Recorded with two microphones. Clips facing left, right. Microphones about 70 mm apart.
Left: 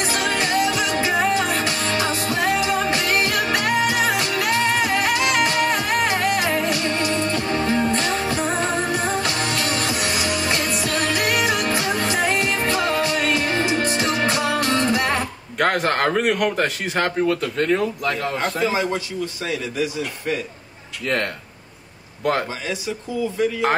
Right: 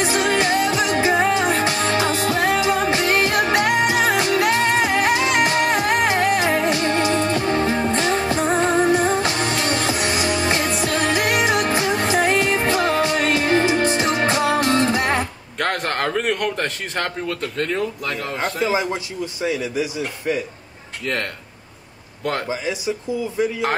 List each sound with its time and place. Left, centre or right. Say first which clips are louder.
0.0 s music: right 3 dB; right
15.5 s a man's voice: left 3 dB; centre
18.6 s speech: right 1 dB; centre
21.0 s speech: left 2 dB; centre
22.5 s speech: right 3 dB; centre